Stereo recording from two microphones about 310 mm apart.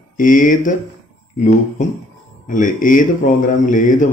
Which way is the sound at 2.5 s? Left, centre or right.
Left.